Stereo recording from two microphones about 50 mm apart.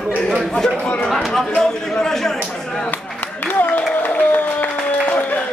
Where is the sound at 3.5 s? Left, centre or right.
Left.